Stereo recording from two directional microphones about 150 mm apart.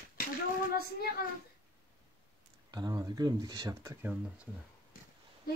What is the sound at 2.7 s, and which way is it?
Speech, 25° right (ahead or behind).